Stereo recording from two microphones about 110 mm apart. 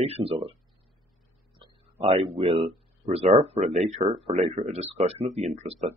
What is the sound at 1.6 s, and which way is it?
Speech, 60° right (ahead or behind).